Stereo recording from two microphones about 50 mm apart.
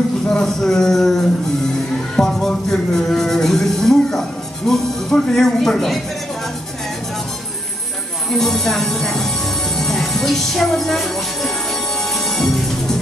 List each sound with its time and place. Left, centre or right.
0.3 s speech: centre
2.1 s a sound: centre
8.3 s speech: centre
9.8 s music: centre
12.3 s music: centre